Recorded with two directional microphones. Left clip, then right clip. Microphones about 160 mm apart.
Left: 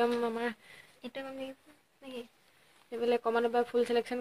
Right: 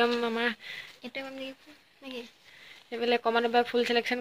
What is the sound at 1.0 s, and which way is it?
Speech, 10° right (ahead or behind).